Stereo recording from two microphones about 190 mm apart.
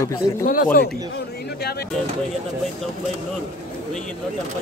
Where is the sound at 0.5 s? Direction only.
50° left (ahead or behind).